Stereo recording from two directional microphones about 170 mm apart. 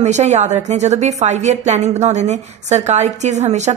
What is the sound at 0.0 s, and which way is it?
Speech, 40° right (ahead or behind).